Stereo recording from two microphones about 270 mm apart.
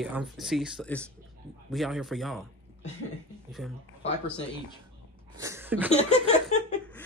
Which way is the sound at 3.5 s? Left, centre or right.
Centre.